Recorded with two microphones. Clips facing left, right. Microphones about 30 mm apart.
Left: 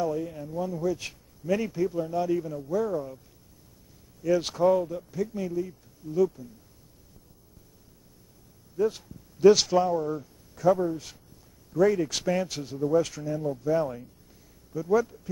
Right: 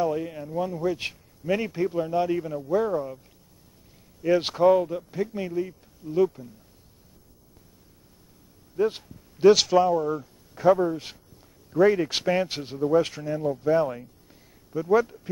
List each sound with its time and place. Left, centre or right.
0.0 s speech: right
4.2 s speech: right
8.7 s speech: right
9.5 s speech: centre
10.5 s speech: right